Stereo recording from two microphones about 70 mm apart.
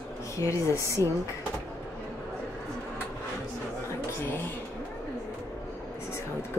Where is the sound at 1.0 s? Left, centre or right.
Right.